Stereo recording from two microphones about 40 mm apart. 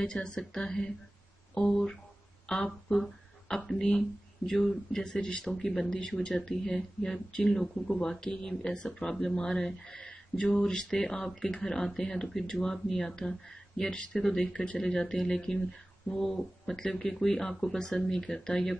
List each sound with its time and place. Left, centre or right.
0.0 s speech: left
4.6 s speech: centre
5.0 s speech: centre